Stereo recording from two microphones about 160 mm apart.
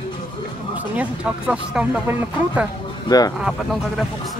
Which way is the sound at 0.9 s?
5° right (ahead or behind).